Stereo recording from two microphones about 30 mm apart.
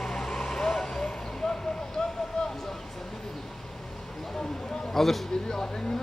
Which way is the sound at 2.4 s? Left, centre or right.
Left.